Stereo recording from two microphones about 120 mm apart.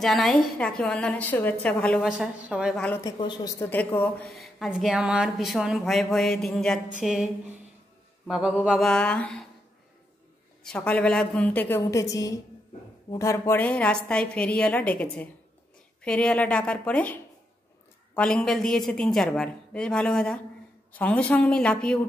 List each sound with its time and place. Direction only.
0.0 s a woman's voice: centre (ahead or behind)
2.0 s speech: 5° right (ahead or behind)
3.0 s a woman's voice: 35° left (ahead or behind)
3.4 s a woman's voice: 25° left (ahead or behind)
4.3 s speech: centre (ahead or behind)
8.3 s a woman's voice: 5° right (ahead or behind)
10.6 s a woman's voice: 10° left (ahead or behind); by 13.6 s 25° left (ahead or behind)
13.6 s a woman's voice: 10° left (ahead or behind)